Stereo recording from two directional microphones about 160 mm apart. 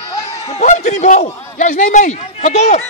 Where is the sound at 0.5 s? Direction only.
45° left (ahead or behind).